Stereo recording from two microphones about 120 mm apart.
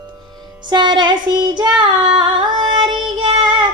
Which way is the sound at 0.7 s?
35° right (ahead or behind).